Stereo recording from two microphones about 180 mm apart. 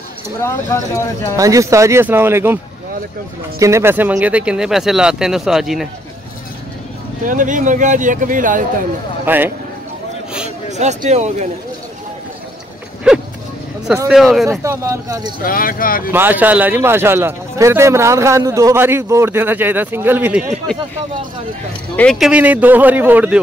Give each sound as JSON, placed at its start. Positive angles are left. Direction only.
{"t": 0.4, "sound": "speech", "side_deg": 15}
{"t": 1.3, "sound": "speech", "side_deg": -20}
{"t": 7.2, "sound": "speech", "side_deg": -45}
{"t": 9.2, "sound": "a man's voice", "side_deg": -10}
{"t": 10.8, "sound": "speech", "side_deg": -40}
{"t": 13.1, "sound": "a sound", "side_deg": -5}
{"t": 13.9, "sound": "speech", "side_deg": -5}
{"t": 14.6, "sound": "speech", "side_deg": -15}
{"t": 15.4, "sound": "speech", "side_deg": 50}
{"t": 16.1, "sound": "speech", "side_deg": -10}
{"t": 21.9, "sound": "speech", "side_deg": 5}
{"t": 22.3, "sound": "speech", "side_deg": -10}